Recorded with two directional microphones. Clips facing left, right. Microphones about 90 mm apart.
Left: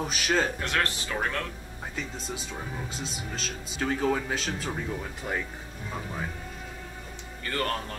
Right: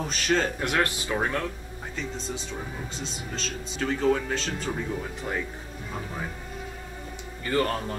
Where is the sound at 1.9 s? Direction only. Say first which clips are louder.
Right 3 dB; 5° left (ahead or behind).